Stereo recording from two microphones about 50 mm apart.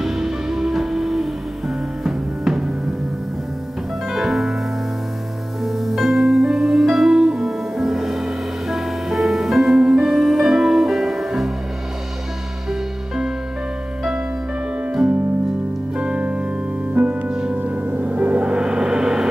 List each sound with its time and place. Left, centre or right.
0.0 s music: centre
4.1 s music: centre
5.6 s music: centre
14.9 s music: centre
16.0 s keyboard: centre
17.0 s music: right
17.6 s gong: right; by 19.2 s centre